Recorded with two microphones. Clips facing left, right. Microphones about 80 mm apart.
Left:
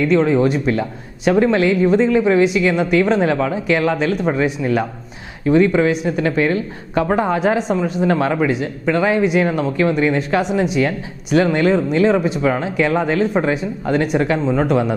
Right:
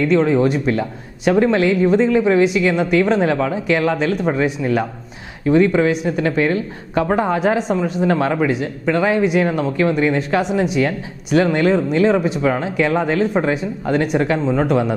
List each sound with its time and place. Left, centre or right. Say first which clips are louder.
0.0 s a woman's voice: even; centre